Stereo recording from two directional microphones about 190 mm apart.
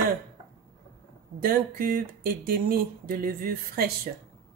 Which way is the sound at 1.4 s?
50° right (ahead or behind).